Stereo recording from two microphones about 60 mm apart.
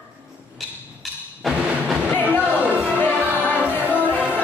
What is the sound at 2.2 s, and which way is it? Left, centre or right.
Music, right.